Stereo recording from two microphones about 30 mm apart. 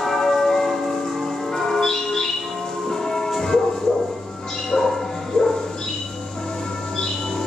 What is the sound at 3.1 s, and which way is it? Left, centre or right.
Music, centre.